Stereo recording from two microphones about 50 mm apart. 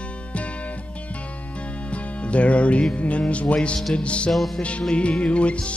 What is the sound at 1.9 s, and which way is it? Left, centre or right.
Music, left.